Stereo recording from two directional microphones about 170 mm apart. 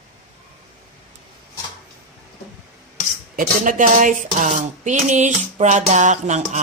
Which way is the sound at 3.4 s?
50° right (ahead or behind).